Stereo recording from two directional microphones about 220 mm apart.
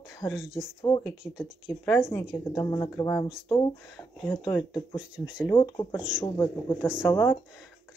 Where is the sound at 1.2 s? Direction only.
5° left (ahead or behind).